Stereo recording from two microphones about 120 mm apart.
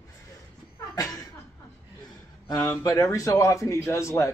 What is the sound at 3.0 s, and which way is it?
Speech, 25° left (ahead or behind).